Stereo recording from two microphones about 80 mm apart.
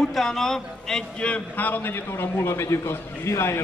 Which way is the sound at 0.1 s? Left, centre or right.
Centre.